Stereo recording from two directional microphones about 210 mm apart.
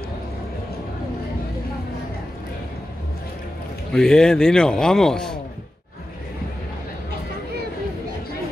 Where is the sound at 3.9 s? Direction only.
5° left (ahead or behind).